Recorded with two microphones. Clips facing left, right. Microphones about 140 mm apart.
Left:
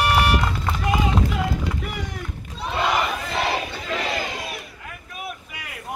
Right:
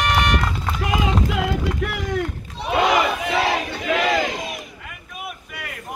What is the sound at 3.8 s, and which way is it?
Battle cry, 75° right (ahead or behind).